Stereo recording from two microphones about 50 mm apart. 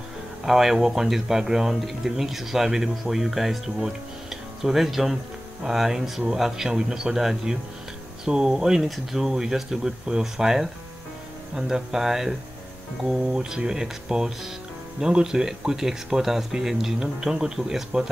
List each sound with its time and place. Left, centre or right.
0.5 s speech: centre